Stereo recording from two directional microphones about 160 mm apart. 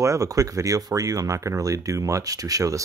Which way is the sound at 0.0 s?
20° right (ahead or behind).